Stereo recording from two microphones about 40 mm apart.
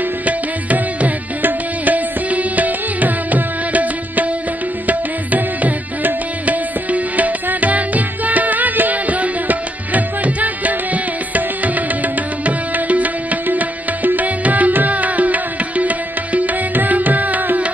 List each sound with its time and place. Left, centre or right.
0.2 s music: right